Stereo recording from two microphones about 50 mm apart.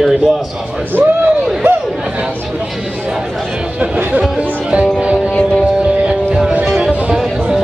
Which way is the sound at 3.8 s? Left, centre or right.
Right.